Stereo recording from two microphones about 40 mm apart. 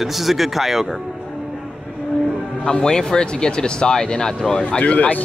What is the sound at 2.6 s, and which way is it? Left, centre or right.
Speech, centre.